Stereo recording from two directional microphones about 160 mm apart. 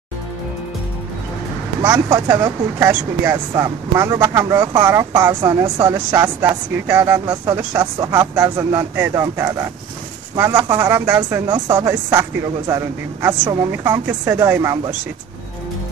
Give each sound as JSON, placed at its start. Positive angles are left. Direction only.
{"t": 2.0, "sound": "speech", "side_deg": -25}
{"t": 5.9, "sound": "speech", "side_deg": -15}